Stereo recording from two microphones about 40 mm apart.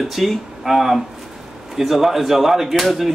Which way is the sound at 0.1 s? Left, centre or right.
Centre.